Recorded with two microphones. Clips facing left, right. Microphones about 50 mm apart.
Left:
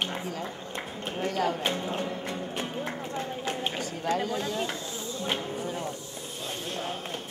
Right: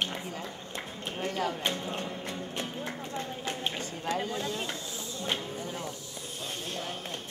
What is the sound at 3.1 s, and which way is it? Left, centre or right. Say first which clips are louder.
Run: left 3 dB; centre.